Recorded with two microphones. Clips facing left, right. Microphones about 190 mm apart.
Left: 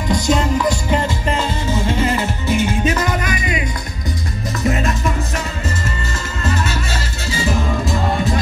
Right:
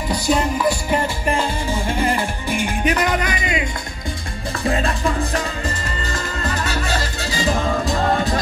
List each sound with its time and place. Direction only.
0.1 s music: 10° right (ahead or behind)
4.6 s music: 30° right (ahead or behind)
6.4 s music: 40° right (ahead or behind)